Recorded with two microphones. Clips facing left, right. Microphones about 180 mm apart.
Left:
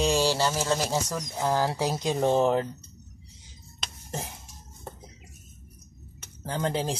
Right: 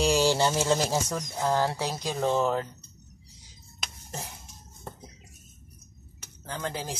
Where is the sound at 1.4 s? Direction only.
10° left (ahead or behind).